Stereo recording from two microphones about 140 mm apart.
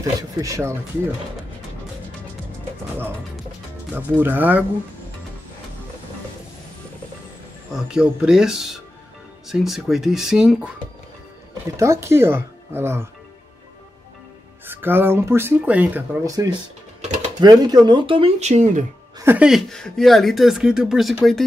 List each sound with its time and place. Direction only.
0.0 s speech: 25° right (ahead or behind)
3.9 s speech: 15° right (ahead or behind)
7.7 s speech: 5° right (ahead or behind)
11.7 s speech: 20° right (ahead or behind)
14.7 s speech: 15° right (ahead or behind)
17.4 s speech: 30° right (ahead or behind)
18.4 s speech: 55° right (ahead or behind)
19.1 s a sound: 15° right (ahead or behind)
19.4 s speech: centre (ahead or behind)